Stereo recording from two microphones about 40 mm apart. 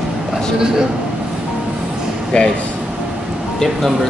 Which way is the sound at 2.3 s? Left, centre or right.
Left.